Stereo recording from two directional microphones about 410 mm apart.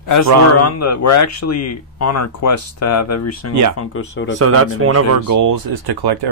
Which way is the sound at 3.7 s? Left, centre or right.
Left.